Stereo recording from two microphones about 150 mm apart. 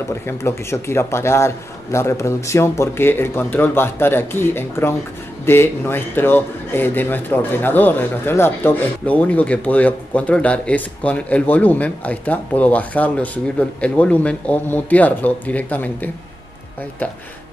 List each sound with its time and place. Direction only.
0.1 s speech: 15° left (ahead or behind)